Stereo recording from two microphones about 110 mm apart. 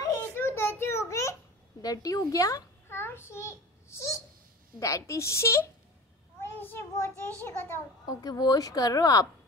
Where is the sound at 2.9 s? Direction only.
20° left (ahead or behind).